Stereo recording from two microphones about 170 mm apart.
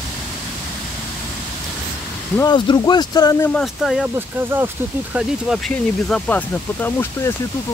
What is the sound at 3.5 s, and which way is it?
Speech, centre (ahead or behind).